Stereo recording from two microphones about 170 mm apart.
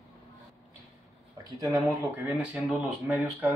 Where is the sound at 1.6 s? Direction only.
20° right (ahead or behind).